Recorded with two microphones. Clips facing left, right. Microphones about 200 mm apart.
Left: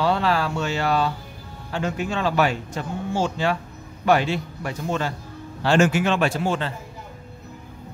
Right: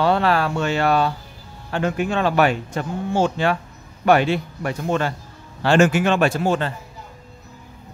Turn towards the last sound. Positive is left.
turn(degrees=-45)  # may be behind; listen again after turning